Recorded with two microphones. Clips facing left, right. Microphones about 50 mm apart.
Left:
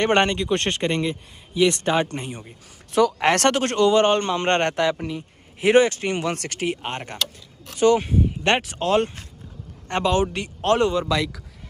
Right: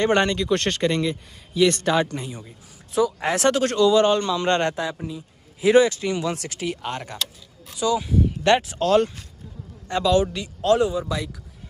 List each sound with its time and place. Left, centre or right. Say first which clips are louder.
0.0 s speech: left 1 dB; left
2.0 s a man's voice: even; left
2.9 s speech: left 3 dB; left
3.5 s a man's voice: even; left
5.0 s a sound: left 3 dB; left
5.7 s a man's voice: even; left
6.7 s a man's voice: left 1 dB; left
7.7 s speech: left 5 dB; left
8.3 s a man's voice: right 6 dB; left
9.8 s a man's voice: right 1 dB; left
10.9 s speech: left 4 dB; left